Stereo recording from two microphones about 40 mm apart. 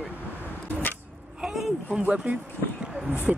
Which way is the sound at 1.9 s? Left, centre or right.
Right.